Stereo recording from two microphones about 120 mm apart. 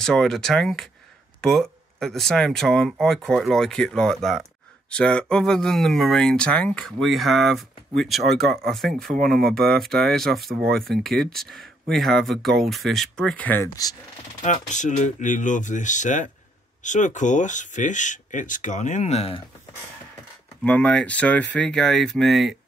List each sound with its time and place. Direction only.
0.0 s speech: 5° left (ahead or behind)
13.8 s speech: 30° left (ahead or behind)
14.4 s speech: 90° left; by 19.4 s 55° left (ahead or behind)
20.6 s speech: 10° left (ahead or behind)